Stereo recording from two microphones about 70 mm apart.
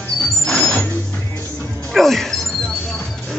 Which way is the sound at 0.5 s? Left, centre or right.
Centre.